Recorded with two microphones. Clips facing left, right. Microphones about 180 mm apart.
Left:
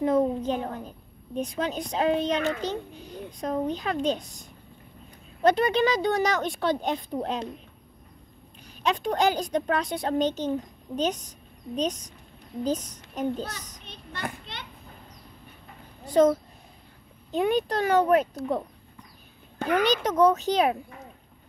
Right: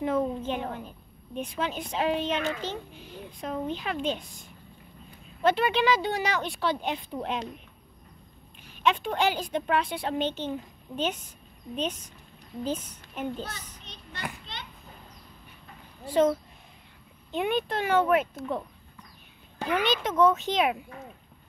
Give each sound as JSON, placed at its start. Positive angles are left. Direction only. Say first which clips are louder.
{"t": 0.0, "sound": "a woman's voice", "louder": "left 4 dB", "side_deg": 40}
{"t": 8.6, "sound": "a woman's voice", "louder": "even", "side_deg": 40}
{"t": 13.8, "sound": "children playing", "louder": "left 3 dB", "side_deg": 55}
{"t": 16.1, "sound": "a woman's voice", "louder": "left 3 dB", "side_deg": 40}